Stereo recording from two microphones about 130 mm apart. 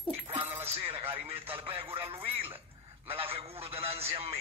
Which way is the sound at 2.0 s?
45° right (ahead or behind).